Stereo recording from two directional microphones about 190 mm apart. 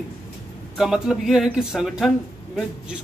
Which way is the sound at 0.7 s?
Centre (ahead or behind).